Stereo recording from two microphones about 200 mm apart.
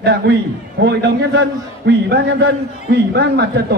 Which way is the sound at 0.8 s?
60° right (ahead or behind).